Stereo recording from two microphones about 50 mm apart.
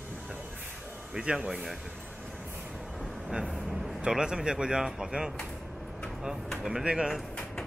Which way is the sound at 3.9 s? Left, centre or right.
Centre.